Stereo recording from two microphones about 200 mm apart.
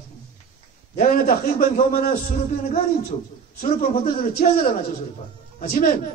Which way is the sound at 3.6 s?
40° left (ahead or behind).